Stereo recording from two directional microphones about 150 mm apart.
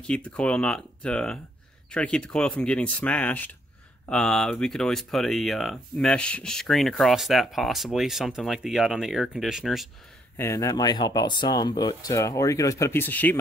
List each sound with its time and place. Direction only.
0.0 s speech: 10° left (ahead or behind)
10.3 s speech: 20° left (ahead or behind)